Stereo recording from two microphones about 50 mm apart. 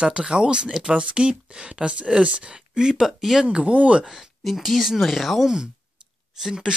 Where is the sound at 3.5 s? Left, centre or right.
Right.